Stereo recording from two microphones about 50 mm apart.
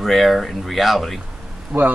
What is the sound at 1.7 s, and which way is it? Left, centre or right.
Speech, right.